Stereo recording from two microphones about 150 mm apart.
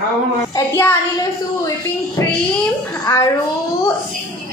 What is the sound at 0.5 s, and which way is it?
Speech, 20° left (ahead or behind).